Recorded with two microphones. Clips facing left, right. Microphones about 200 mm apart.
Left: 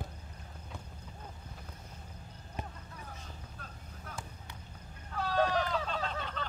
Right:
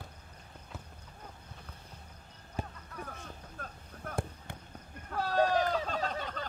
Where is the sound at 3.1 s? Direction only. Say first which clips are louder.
Right 2 dB; 55° right (ahead or behind).